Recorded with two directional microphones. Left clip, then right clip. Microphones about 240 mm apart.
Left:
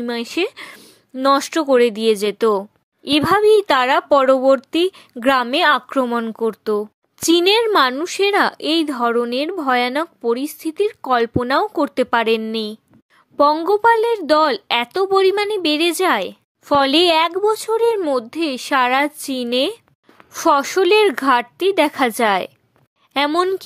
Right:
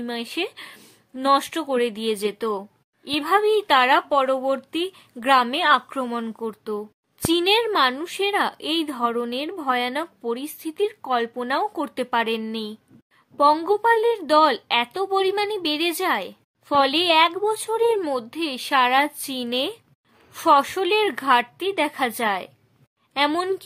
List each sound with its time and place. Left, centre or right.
0.0 s a woman's voice: left